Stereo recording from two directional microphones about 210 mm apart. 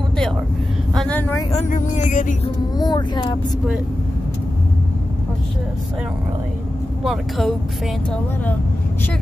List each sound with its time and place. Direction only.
0.9 s vehicle: 5° left (ahead or behind)
1.5 s speech: 35° left (ahead or behind)
2.8 s speech: 20° left (ahead or behind)
7.1 s speech: centre (ahead or behind)